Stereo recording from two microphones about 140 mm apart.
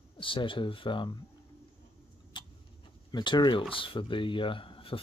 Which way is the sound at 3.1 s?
30° left (ahead or behind).